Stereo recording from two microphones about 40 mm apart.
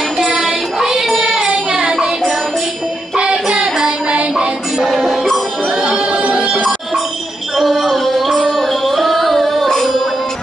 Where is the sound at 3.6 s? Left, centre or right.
Centre.